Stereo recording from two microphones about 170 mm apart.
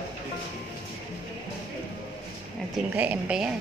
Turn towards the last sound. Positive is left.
turn(degrees=-5)  # may be behind; listen again after turning